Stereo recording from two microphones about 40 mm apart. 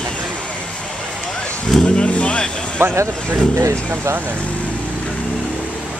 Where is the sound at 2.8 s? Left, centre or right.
Right.